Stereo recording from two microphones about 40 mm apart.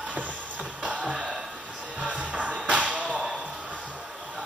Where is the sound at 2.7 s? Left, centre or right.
Right.